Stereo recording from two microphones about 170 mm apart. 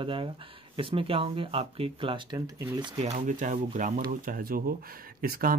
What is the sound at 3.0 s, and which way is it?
Speech, 45° right (ahead or behind).